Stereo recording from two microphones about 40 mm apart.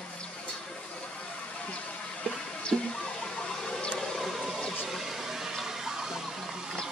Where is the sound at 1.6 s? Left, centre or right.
Left.